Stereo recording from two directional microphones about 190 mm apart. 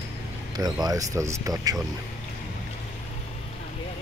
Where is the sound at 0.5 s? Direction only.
20° right (ahead or behind).